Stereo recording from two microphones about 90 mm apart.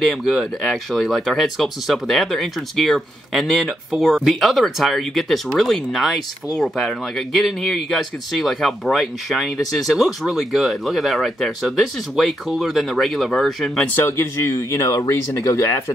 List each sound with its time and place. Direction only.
0.0 s speech: centre (ahead or behind)
13.9 s speech: 25° left (ahead or behind)